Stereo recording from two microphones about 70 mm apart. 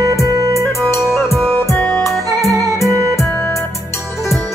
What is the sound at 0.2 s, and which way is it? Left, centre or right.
Music, right.